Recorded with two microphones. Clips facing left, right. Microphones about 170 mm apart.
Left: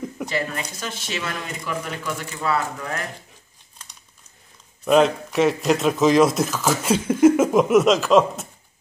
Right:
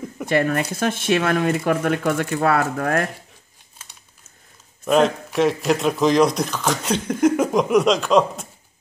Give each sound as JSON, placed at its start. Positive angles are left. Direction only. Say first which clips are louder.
{"t": 0.3, "sound": "speech", "louder": "right 11 dB", "side_deg": -55}
{"t": 4.8, "sound": "speech", "louder": "left 1 dB", "side_deg": 0}